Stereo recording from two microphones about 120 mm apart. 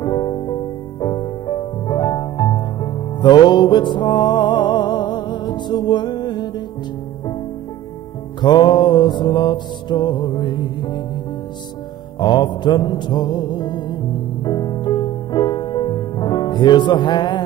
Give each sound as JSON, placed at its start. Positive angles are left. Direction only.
{"t": 0.0, "sound": "music", "side_deg": 35}
{"t": 8.4, "sound": "music", "side_deg": 40}
{"t": 12.2, "sound": "music", "side_deg": 40}